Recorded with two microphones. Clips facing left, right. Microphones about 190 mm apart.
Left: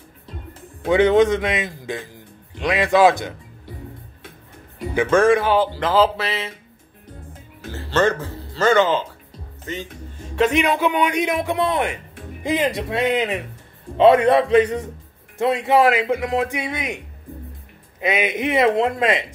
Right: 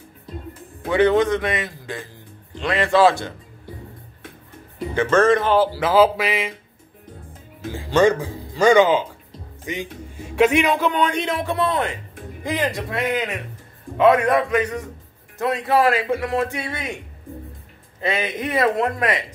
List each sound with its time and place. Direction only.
0.8 s a man's voice: 20° left (ahead or behind)
4.9 s a man's voice: 10° left (ahead or behind)
5.6 s speech: 10° right (ahead or behind)
7.7 s a man's voice: 15° right (ahead or behind); by 17.0 s 15° left (ahead or behind)
18.0 s a man's voice: 15° left (ahead or behind)